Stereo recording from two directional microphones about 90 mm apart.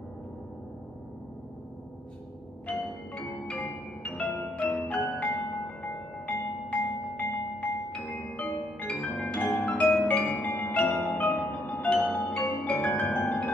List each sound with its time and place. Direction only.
3.2 s music: 15° left (ahead or behind)
13.2 s music: 5° left (ahead or behind)